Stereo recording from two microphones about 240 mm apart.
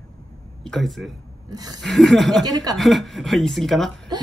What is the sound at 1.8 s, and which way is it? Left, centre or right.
Speech, centre.